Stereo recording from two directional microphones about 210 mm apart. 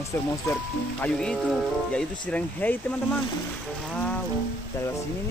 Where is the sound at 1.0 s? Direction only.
5° left (ahead or behind).